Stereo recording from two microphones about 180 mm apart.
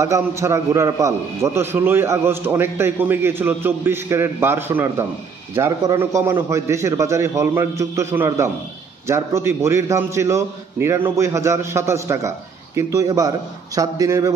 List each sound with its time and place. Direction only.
0.4 s a man's voice: 15° right (ahead or behind)